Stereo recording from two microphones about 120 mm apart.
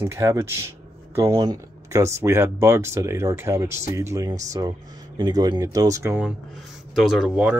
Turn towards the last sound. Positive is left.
turn(degrees=-10)  # may be behind; listen again after turning